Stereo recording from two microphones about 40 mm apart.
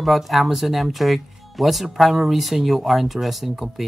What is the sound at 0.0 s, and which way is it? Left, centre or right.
Speech, centre.